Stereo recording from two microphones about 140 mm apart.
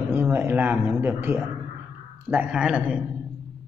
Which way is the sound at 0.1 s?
15° right (ahead or behind).